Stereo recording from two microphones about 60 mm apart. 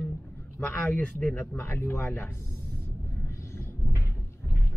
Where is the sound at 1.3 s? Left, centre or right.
Left.